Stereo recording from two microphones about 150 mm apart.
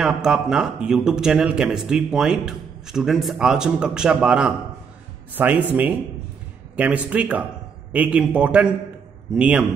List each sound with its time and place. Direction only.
0.0 s a man's voice: 5° right (ahead or behind)